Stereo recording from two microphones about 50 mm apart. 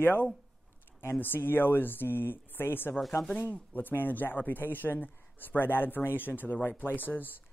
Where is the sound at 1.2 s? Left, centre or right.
Left.